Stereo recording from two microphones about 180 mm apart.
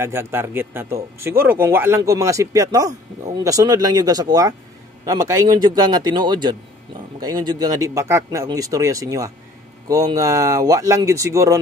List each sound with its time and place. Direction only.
0.0 s speech: 15° right (ahead or behind)